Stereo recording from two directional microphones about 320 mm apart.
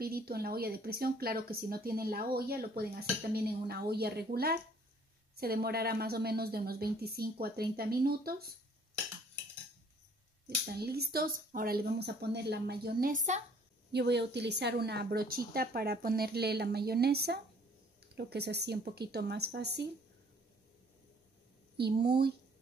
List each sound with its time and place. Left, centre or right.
0.0 s speech: right
10.6 s speech: right
21.7 s speech: right